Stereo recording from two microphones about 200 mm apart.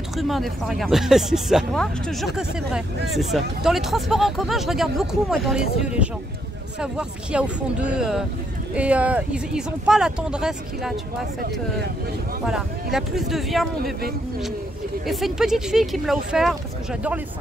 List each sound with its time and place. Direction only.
0.2 s speech: centre (ahead or behind)
12.4 s speech: centre (ahead or behind)
15.0 s speech: centre (ahead or behind)